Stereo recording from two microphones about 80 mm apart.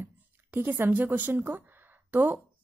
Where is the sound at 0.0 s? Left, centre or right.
Right.